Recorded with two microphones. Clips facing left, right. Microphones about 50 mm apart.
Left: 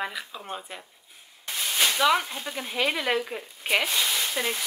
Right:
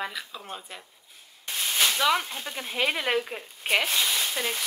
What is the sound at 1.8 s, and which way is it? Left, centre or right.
Speech, centre.